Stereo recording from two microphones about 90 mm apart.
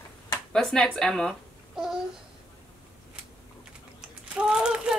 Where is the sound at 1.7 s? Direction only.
5° right (ahead or behind).